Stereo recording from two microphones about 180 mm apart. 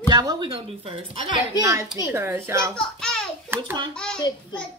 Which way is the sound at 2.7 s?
5° left (ahead or behind).